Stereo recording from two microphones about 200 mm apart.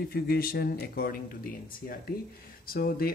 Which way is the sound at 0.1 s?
50° left (ahead or behind).